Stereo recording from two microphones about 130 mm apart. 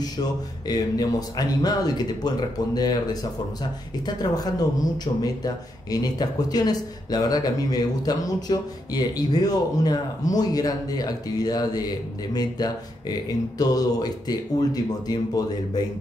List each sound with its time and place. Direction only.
0.0 s a man's voice: 30° left (ahead or behind)